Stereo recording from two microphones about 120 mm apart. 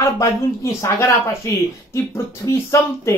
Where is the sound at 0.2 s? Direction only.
25° left (ahead or behind).